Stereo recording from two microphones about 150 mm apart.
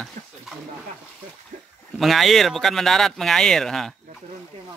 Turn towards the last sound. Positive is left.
turn(degrees=0)  # may be behind; listen again after turning